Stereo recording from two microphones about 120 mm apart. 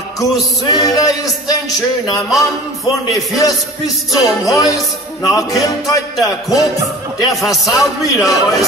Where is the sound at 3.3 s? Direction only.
30° left (ahead or behind).